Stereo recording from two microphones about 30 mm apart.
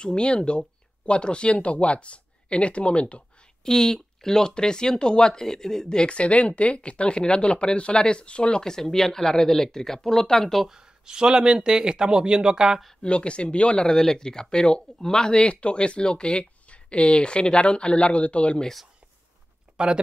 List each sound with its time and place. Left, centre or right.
0.0 s speech: left
3.6 s speech: centre
6.0 s speech: left
8.6 s speech: centre
10.7 s speech: right
13.0 s speech: left
13.7 s speech: left
16.6 s speech: left